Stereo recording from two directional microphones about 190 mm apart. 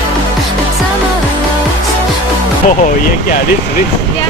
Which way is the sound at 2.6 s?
45° left (ahead or behind).